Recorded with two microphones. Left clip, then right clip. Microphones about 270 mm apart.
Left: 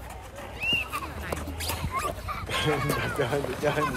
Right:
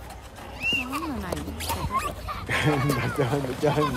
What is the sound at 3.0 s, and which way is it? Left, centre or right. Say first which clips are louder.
Speech: right 1 dB; right.